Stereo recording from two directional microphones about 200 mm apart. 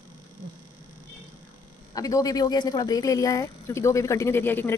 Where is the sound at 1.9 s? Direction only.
15° left (ahead or behind).